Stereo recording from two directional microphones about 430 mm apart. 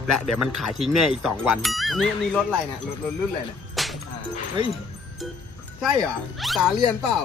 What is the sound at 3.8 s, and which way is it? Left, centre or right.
Music, centre.